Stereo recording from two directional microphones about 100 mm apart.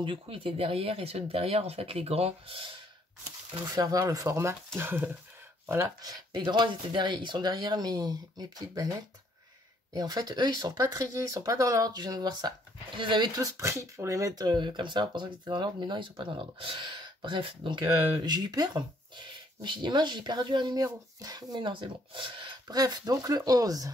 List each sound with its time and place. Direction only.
0.0 s speech: 60° right (ahead or behind)
3.7 s speech: 35° right (ahead or behind); by 5.1 s 20° right (ahead or behind)
6.0 s speech: 45° right (ahead or behind)
9.9 s speech: 40° right (ahead or behind)
13.4 s speech: 30° right (ahead or behind); by 17.8 s 55° right (ahead or behind)
17.8 s speech: 45° right (ahead or behind)
22.7 s speech: 40° right (ahead or behind)